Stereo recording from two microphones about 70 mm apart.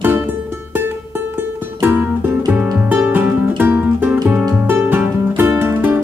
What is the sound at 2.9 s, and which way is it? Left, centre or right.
Music, right.